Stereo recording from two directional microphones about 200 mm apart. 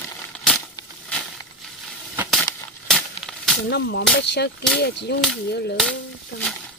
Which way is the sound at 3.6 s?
60° left (ahead or behind).